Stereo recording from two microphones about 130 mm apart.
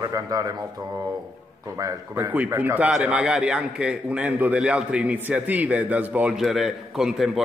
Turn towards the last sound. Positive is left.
turn(degrees=-5)  # may be behind; listen again after turning